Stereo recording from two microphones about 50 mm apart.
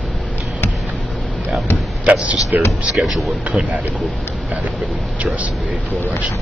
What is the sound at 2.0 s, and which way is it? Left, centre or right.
A man's voice, right.